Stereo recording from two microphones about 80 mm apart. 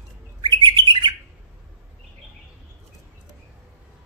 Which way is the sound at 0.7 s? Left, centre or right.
Right.